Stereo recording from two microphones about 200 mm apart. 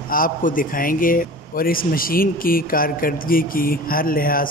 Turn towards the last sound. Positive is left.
turn(degrees=45)  # may be behind; listen again after turning